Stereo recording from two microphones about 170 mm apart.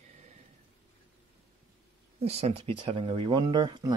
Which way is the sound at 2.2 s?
35° right (ahead or behind).